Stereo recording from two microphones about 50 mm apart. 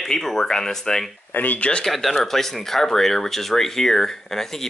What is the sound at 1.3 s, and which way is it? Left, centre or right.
Speech, left.